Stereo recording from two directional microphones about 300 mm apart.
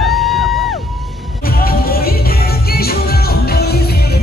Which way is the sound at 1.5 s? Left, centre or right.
Left.